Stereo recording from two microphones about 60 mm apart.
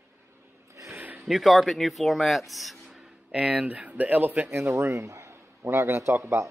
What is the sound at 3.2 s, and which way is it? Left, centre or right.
Speech, centre.